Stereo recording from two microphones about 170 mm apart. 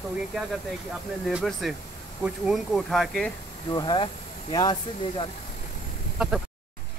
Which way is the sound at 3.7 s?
25° left (ahead or behind).